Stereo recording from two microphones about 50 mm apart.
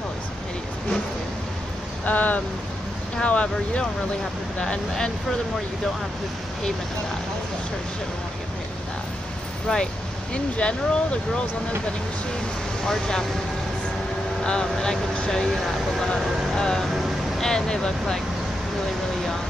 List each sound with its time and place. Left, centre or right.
2.0 s speech: left
9.7 s speech: left
12.8 s speech: centre
14.4 s speech: centre
15.5 s speech: centre
16.1 s speech: centre